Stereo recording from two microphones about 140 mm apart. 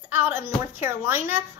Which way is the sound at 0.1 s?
15° right (ahead or behind).